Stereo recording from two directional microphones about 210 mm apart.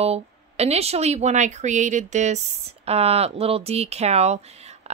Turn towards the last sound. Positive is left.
turn(degrees=-30)  # may be behind; listen again after turning